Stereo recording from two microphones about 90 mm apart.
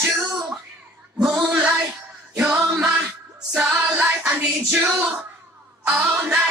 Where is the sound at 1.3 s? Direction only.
10° right (ahead or behind).